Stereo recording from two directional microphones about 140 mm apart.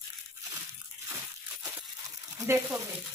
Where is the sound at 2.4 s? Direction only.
20° right (ahead or behind).